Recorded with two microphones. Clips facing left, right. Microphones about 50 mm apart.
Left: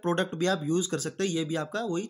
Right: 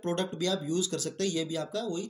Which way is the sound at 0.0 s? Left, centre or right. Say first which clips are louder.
Left 4 dB; left.